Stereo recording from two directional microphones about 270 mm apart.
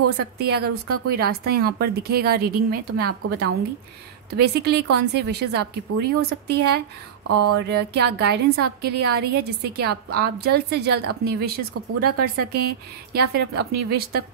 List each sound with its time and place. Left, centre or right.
0.2 s a woman's voice: right
7.2 s a sound: right
7.5 s a woman's voice: right